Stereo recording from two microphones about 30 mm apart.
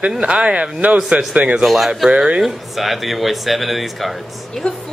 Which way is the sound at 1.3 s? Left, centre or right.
Right.